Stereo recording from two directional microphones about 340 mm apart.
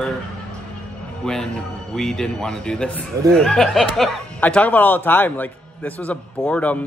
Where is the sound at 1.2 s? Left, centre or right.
Centre.